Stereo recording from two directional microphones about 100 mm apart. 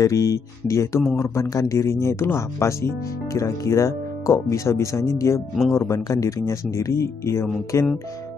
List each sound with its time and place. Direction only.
0.0 s speech: 30° left (ahead or behind)
5.6 s speech: centre (ahead or behind)
5.9 s speech: 35° left (ahead or behind)